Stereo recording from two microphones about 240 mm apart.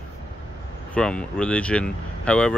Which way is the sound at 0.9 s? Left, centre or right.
Centre.